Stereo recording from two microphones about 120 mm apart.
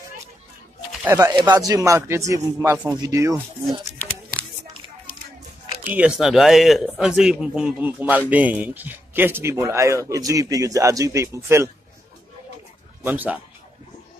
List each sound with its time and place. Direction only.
1.0 s speech: 25° right (ahead or behind)
5.9 s speech: 5° right (ahead or behind); by 11.7 s 20° right (ahead or behind)
13.0 s speech: 15° right (ahead or behind)